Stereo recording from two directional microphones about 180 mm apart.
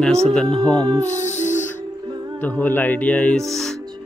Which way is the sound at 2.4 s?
10° left (ahead or behind).